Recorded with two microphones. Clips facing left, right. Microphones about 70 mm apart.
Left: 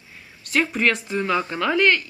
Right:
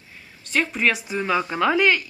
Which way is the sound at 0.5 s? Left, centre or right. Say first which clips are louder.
Left 1 dB; centre.